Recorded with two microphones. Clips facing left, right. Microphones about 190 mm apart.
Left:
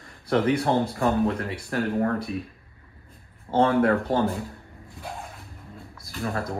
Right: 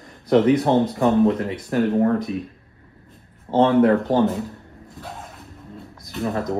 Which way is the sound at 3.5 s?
Centre (ahead or behind).